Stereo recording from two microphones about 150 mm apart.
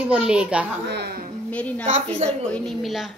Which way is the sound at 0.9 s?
90° right.